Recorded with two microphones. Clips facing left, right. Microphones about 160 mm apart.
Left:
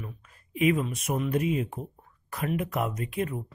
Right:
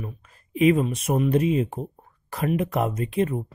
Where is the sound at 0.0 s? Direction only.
30° right (ahead or behind).